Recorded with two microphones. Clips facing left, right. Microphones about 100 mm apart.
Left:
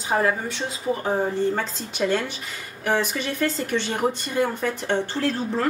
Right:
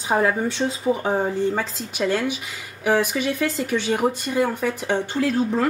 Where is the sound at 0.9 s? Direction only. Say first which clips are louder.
Right 2 dB; 15° right (ahead or behind).